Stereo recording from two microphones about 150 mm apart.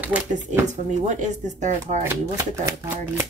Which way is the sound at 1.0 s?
55° right (ahead or behind).